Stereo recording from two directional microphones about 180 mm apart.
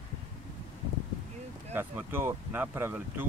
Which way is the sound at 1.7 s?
10° right (ahead or behind).